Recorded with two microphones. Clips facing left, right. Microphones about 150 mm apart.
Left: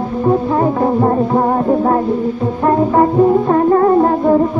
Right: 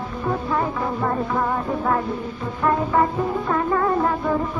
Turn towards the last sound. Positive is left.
turn(degrees=40)  # may be behind; listen again after turning